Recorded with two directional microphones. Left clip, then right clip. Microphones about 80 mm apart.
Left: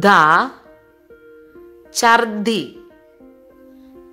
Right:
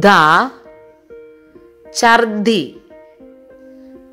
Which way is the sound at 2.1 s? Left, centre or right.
Centre.